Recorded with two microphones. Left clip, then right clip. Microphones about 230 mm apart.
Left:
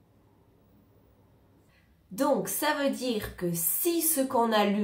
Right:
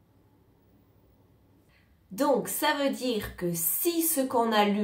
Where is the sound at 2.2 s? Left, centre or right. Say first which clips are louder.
Right 1 dB; centre.